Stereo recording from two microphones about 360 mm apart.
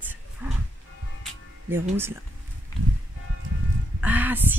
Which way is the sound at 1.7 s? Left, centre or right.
Centre.